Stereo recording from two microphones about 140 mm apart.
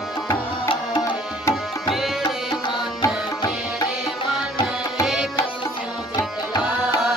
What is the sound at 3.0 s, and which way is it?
Music, 25° left (ahead or behind).